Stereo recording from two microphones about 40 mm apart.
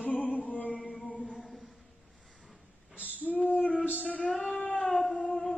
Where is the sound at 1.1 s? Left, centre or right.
Left.